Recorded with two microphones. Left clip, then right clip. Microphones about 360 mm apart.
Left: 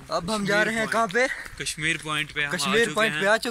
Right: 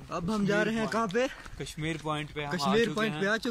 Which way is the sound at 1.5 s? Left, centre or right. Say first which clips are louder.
Left 12 dB; centre.